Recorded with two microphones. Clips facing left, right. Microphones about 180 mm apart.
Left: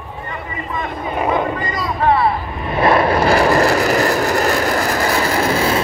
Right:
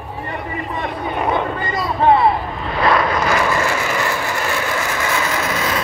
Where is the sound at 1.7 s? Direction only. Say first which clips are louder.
Right 5 dB; 25° right (ahead or behind).